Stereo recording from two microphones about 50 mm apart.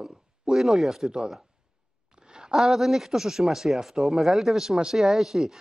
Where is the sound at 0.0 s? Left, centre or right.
Centre.